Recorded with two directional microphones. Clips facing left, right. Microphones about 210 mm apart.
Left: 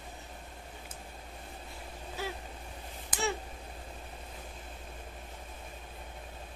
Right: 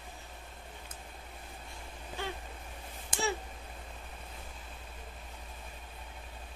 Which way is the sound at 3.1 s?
25° right (ahead or behind).